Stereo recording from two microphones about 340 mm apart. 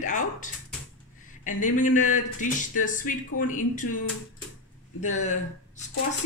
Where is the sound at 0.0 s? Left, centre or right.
Left.